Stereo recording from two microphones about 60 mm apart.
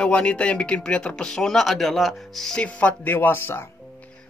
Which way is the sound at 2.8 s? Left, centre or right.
Left.